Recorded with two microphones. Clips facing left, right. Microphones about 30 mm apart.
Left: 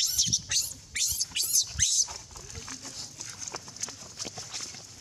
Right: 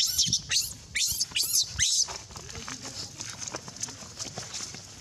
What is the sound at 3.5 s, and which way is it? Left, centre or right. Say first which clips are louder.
Horse: right 1 dB; centre.